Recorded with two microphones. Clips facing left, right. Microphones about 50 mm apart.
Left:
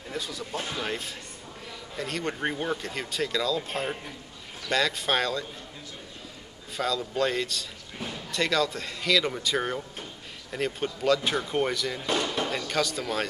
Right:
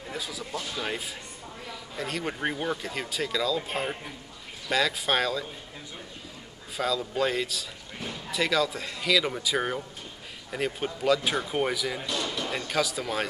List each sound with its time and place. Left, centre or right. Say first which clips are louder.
0.1 s speech: left 1 dB; centre
6.8 s speech: even; centre